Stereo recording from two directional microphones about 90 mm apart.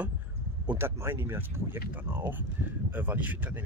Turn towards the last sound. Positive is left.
turn(degrees=-20)  # may be behind; listen again after turning